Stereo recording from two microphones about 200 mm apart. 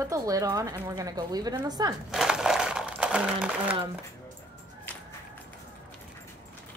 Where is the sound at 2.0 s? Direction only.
5° right (ahead or behind).